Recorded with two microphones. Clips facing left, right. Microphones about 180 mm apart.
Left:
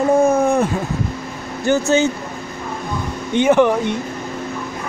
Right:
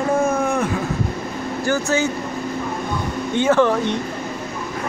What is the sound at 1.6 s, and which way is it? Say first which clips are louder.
Speech: left 5 dB; 25° left (ahead or behind).